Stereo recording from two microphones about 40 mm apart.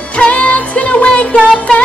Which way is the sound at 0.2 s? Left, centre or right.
Left.